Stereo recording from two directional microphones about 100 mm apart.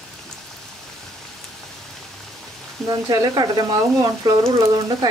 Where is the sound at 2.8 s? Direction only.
40° right (ahead or behind).